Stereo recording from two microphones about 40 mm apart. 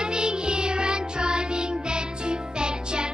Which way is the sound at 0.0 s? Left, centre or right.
Right.